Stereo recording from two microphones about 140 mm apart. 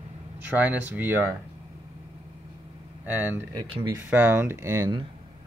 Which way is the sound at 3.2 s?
15° right (ahead or behind).